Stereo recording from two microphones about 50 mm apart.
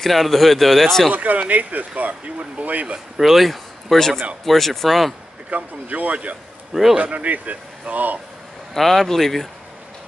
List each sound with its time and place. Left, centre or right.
0.0 s speech: centre
1.1 s speech: right
3.2 s speech: centre
5.5 s speech: right
6.7 s a man's voice: centre
7.0 s speech: right
8.7 s speech: centre